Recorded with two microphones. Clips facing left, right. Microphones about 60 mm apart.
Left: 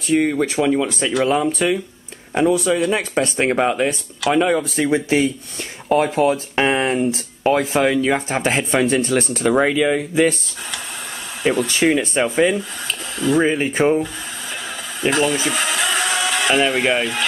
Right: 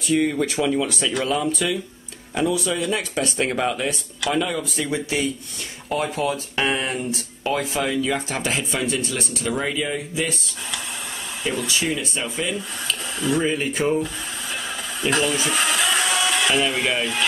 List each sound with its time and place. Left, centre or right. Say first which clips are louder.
0.3 s speech: left 4 dB; left
1.5 s speech: left 5 dB; left
8.1 s speech: left 5 dB; left
11.4 s speech: left 8 dB; left
13.4 s speech: left 7 dB; left
15.0 s speech: left 4 dB; centre
15.5 s a sound: left 1 dB; centre
16.6 s speech: left 5 dB; left